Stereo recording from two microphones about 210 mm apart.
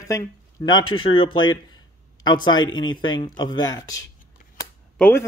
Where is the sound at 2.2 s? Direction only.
20° left (ahead or behind).